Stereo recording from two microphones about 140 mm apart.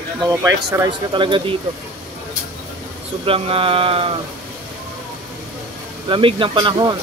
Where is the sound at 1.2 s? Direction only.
35° right (ahead or behind).